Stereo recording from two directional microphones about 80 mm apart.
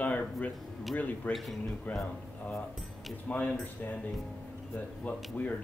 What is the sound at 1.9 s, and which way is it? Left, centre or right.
Speech, centre.